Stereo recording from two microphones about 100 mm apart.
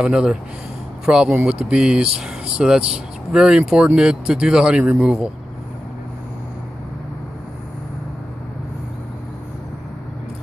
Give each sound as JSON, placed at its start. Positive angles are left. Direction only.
{"t": 0.0, "sound": "speech", "side_deg": -10}